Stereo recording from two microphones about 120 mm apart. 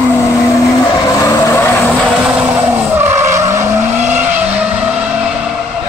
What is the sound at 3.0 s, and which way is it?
Vehicle, 20° right (ahead or behind).